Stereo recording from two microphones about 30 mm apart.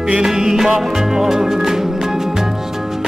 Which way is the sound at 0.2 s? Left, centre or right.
Centre.